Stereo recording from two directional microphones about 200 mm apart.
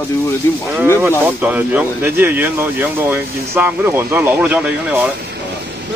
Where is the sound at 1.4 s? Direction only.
10° right (ahead or behind).